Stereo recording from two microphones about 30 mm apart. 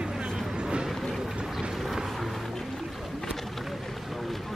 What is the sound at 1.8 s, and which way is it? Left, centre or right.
Vehicle, centre.